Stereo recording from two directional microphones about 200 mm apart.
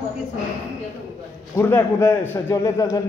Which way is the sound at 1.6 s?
10° left (ahead or behind).